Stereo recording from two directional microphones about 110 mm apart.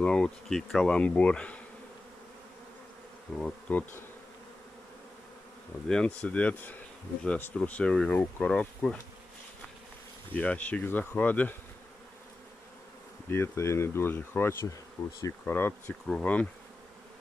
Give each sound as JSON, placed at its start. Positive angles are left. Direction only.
{"t": 0.0, "sound": "bee", "side_deg": 10}
{"t": 3.3, "sound": "bee", "side_deg": 10}
{"t": 5.9, "sound": "bee", "side_deg": 10}
{"t": 10.3, "sound": "bee", "side_deg": 15}
{"t": 13.3, "sound": "speech", "side_deg": 25}
{"t": 15.0, "sound": "bee", "side_deg": 15}
{"t": 15.4, "sound": "speech", "side_deg": 20}
{"t": 16.1, "sound": "bee", "side_deg": 10}